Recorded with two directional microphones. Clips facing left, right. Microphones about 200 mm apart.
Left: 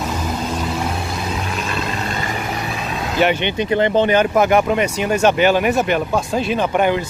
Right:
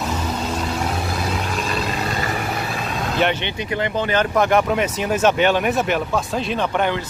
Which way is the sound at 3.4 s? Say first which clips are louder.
Left 7 dB; 25° left (ahead or behind).